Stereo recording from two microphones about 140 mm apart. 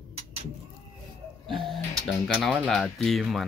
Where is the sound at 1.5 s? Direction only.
Centre (ahead or behind).